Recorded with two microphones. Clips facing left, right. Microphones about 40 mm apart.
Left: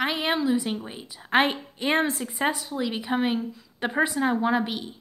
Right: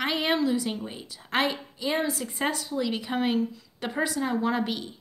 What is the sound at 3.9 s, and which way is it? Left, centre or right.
Speech, left.